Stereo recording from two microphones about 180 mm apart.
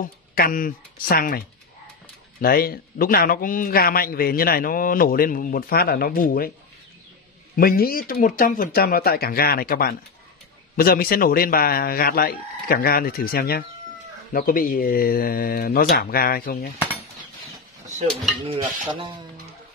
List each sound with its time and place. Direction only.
0.0 s a man's voice: 55° left (ahead or behind)
2.4 s a man's voice: 55° left (ahead or behind)
7.5 s a man's voice: 55° left (ahead or behind)
18.4 s stir: 30° right (ahead or behind)